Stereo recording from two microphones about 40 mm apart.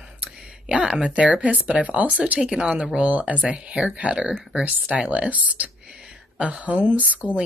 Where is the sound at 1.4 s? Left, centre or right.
Right.